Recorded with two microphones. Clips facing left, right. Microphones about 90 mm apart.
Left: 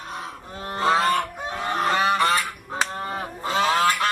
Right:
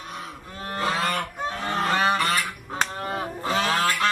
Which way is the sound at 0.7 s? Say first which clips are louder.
Left 5 dB; 25° left (ahead or behind).